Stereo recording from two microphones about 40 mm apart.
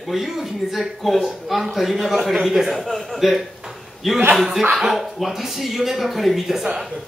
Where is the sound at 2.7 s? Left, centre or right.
Centre.